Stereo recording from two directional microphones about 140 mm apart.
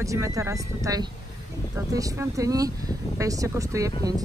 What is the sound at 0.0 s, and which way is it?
Speech, 20° right (ahead or behind).